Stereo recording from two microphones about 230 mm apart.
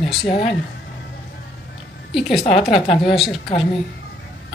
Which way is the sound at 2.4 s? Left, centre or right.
Left.